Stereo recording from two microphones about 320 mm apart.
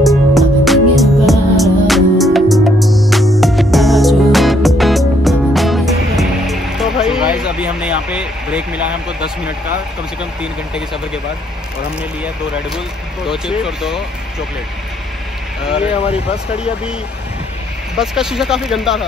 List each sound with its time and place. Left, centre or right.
0.0 s music: centre
7.5 s vehicle: centre
12.7 s speech: centre
15.8 s speech: centre
17.9 s speech: centre